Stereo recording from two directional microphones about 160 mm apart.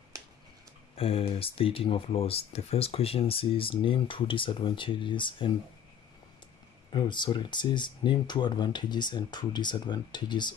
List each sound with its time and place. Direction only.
0.9 s speech: 35° left (ahead or behind)
6.9 s speech: 30° left (ahead or behind)